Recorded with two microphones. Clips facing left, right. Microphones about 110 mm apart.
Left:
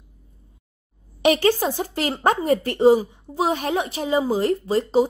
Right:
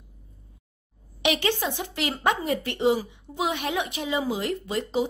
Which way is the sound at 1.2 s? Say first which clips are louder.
Left 7 dB; 40° left (ahead or behind).